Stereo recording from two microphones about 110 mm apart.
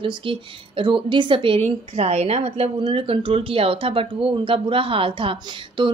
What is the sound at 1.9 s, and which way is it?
Speech, 70° right (ahead or behind).